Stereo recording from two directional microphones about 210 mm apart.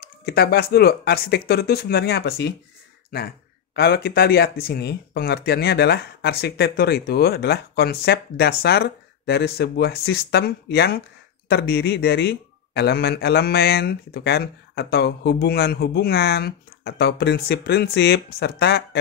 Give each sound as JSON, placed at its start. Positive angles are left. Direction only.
{"t": 0.2, "sound": "a man's voice", "side_deg": 50}
{"t": 3.7, "sound": "a man's voice", "side_deg": 50}